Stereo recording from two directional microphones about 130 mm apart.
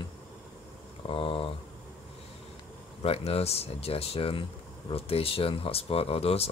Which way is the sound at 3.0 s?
50° left (ahead or behind).